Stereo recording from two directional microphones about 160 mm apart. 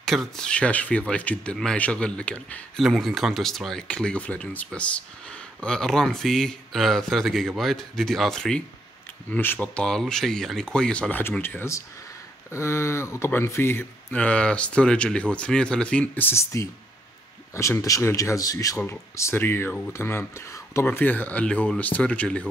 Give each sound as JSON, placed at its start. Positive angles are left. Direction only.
{"t": 0.0, "sound": "speech", "side_deg": 0}